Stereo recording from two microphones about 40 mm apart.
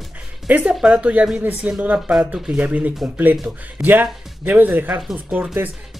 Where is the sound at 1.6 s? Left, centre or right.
Right.